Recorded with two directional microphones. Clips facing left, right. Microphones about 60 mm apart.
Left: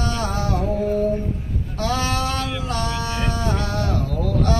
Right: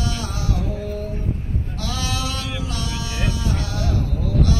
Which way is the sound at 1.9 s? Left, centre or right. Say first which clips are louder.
Left 5 dB; left.